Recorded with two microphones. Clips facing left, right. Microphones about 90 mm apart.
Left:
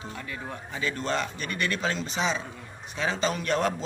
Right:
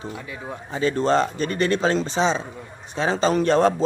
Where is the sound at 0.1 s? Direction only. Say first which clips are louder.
Right 3 dB; 15° right (ahead or behind).